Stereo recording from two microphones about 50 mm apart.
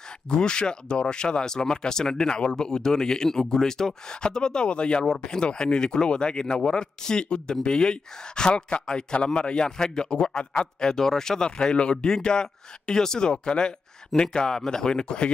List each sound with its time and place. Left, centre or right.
0.3 s speech: centre